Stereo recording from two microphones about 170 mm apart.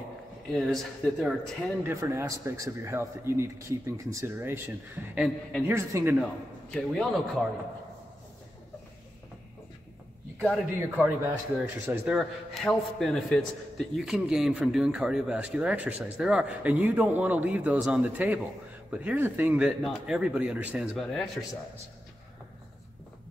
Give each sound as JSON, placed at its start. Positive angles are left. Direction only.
{"t": 0.5, "sound": "a man's voice", "side_deg": 0}
{"t": 1.8, "sound": "a man's voice", "side_deg": -15}
{"t": 5.8, "sound": "a man's voice", "side_deg": -15}
{"t": 6.7, "sound": "a man's voice", "side_deg": 5}
{"t": 10.7, "sound": "a man's voice", "side_deg": -10}
{"t": 12.2, "sound": "a man's voice", "side_deg": 0}
{"t": 20.9, "sound": "a man's voice", "side_deg": 5}